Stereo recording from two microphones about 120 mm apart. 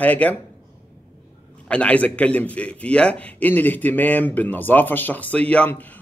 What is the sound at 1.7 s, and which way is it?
Speech, 10° left (ahead or behind).